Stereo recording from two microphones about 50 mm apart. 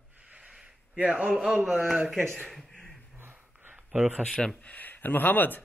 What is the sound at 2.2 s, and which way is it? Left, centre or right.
Speech, centre.